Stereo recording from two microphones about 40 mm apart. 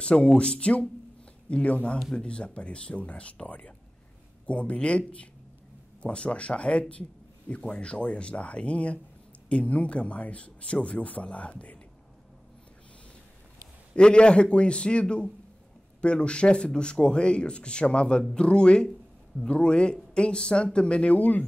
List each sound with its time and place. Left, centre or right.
0.0 s speech: left
13.9 s speech: left